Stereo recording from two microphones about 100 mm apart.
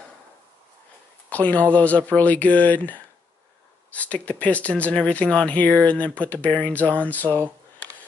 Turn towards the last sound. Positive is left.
turn(degrees=15)  # may be behind; listen again after turning